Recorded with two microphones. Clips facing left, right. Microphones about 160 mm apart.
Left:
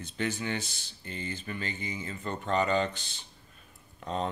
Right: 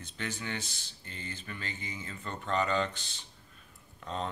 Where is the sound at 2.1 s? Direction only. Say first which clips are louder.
Left 3 dB; 20° left (ahead or behind).